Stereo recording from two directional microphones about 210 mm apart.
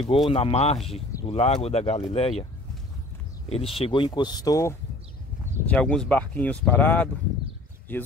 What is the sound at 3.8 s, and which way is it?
Speech, 25° left (ahead or behind).